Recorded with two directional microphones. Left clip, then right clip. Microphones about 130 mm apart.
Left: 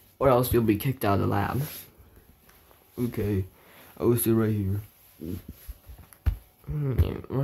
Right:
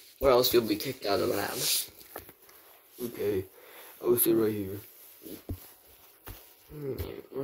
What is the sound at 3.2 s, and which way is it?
Speech, 25° right (ahead or behind).